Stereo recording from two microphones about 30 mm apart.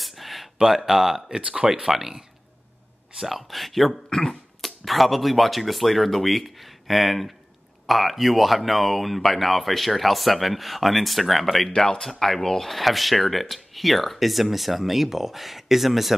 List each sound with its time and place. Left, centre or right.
0.0 s a sound: centre
0.6 s speech: centre
1.5 s speech: right
1.8 s speech: centre
3.3 s speech: centre
4.1 s speech: left
4.6 s speech: centre
11.7 s speech: centre
12.7 s speech: centre